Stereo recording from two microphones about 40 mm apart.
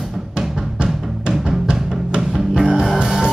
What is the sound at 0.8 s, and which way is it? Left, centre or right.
Music, right.